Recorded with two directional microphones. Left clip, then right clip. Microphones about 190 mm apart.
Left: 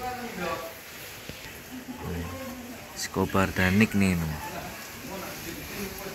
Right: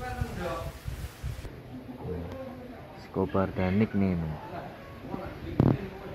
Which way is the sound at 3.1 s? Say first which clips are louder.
Left 2 dB; 25° left (ahead or behind).